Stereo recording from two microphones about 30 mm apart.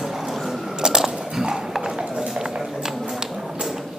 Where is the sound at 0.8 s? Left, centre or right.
Centre.